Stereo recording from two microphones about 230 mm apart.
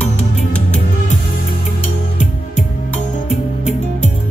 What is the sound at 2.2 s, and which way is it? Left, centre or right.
Music, left.